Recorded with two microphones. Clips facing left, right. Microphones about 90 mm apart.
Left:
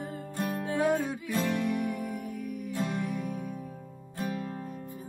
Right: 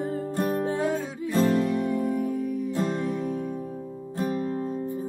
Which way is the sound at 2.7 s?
55° right (ahead or behind).